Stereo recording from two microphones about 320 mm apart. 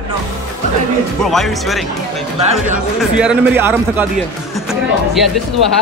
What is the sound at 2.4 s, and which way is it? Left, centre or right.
Speech, centre.